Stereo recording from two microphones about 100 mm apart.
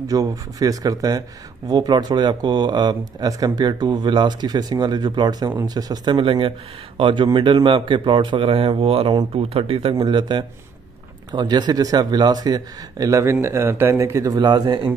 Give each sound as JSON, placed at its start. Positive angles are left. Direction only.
{"t": 0.0, "sound": "speech", "side_deg": -35}
{"t": 6.1, "sound": "speech", "side_deg": -55}
{"t": 9.9, "sound": "speech", "side_deg": -50}